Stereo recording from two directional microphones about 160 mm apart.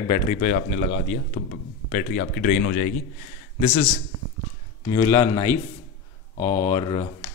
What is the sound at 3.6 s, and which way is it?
Speech, 40° left (ahead or behind).